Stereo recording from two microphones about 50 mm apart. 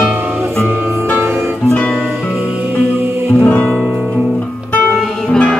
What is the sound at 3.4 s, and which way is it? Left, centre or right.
Music, left.